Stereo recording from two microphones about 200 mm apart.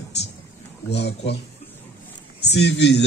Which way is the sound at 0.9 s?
60° left (ahead or behind).